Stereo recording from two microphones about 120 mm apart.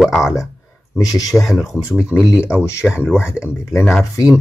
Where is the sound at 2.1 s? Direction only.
25° left (ahead or behind).